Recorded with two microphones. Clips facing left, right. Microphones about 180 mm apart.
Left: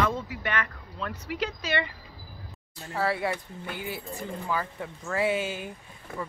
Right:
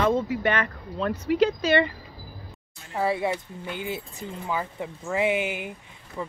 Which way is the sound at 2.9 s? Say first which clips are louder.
Right 3 dB; 20° right (ahead or behind).